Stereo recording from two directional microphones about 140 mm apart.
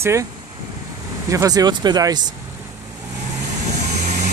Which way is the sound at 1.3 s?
25° right (ahead or behind).